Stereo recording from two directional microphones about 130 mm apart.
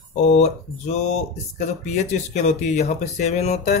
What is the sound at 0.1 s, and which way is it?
Speech, 60° left (ahead or behind).